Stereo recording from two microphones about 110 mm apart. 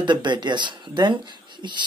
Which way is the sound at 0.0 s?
45° right (ahead or behind).